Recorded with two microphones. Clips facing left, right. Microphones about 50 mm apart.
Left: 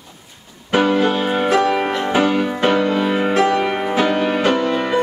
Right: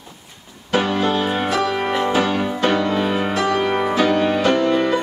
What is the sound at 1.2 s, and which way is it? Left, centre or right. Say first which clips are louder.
Music: left 2 dB; centre.